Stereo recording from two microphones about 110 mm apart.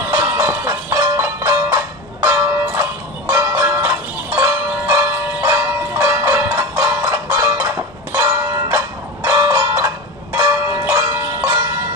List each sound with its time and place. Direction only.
0.1 s music: 30° right (ahead or behind)
2.2 s bell: 25° right (ahead or behind)
4.4 s music: 25° right (ahead or behind)
8.6 s a sound: 25° right (ahead or behind)
10.3 s church bell: 30° right (ahead or behind)